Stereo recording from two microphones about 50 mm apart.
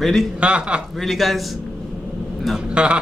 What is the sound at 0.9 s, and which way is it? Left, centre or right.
Speech, centre.